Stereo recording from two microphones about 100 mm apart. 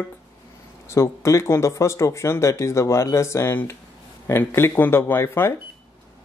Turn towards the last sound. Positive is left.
turn(degrees=25)  # may be behind; listen again after turning